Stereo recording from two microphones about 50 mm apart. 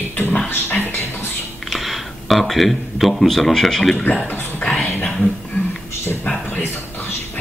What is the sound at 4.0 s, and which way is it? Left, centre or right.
Speech, left.